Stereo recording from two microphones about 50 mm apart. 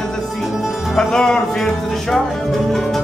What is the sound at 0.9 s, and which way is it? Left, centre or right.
Speech, centre.